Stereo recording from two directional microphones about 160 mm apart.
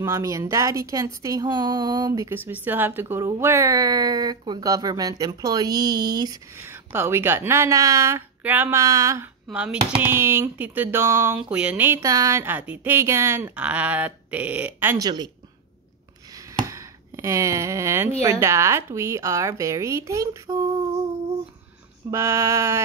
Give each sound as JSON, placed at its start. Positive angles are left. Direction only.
{"t": 0.0, "sound": "a woman's voice", "side_deg": -20}
{"t": 9.5, "sound": "speech", "side_deg": -10}
{"t": 15.0, "sound": "a woman's voice", "side_deg": -25}
{"t": 16.3, "sound": "a sound", "side_deg": -20}
{"t": 18.2, "sound": "a woman's voice", "side_deg": -20}
{"t": 22.1, "sound": "speech", "side_deg": -15}